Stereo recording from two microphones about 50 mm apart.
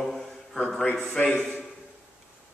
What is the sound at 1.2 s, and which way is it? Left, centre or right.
Speech, centre.